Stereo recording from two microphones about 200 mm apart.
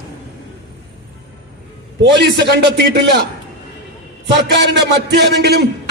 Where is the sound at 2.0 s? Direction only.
55° right (ahead or behind).